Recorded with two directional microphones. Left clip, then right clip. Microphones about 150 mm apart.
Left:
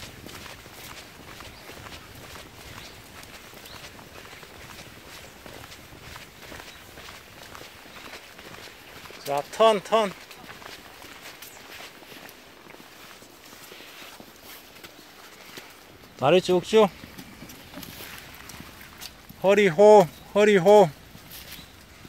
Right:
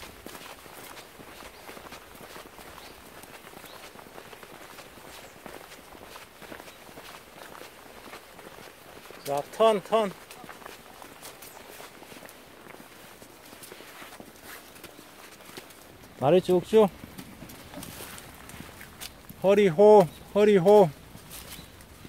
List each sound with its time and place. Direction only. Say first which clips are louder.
9.3 s speech: left 3 dB; 20° left (ahead or behind)
16.2 s speech: left 2 dB; centre (ahead or behind)
19.4 s speech: left 2 dB; centre (ahead or behind)